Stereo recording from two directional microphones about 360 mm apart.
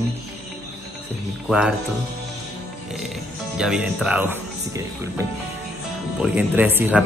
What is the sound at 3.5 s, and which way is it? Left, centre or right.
Speech, centre.